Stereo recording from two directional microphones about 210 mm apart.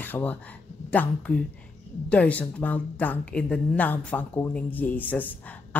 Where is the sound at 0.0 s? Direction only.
10° left (ahead or behind).